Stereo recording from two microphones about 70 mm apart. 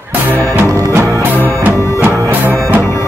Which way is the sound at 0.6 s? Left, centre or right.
Right.